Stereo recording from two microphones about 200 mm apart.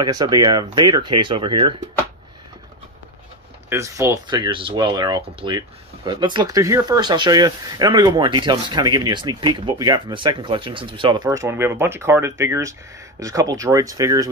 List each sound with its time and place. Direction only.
0.0 s speech: 20° right (ahead or behind)
3.6 s speech: 15° right (ahead or behind)